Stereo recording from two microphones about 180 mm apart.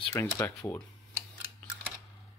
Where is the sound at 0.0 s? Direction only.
15° left (ahead or behind).